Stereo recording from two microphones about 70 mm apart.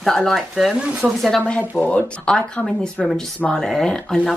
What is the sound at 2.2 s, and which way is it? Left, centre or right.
Speech, centre.